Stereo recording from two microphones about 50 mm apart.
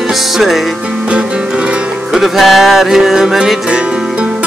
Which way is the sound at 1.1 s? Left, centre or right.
Right.